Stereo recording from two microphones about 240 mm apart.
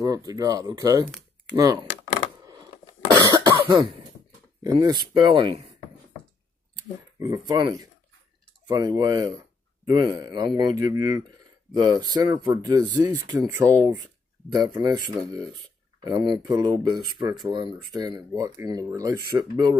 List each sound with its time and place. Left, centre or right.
0.0 s speech: centre
3.3 s cough: centre
4.6 s speech: centre
6.7 s speech: centre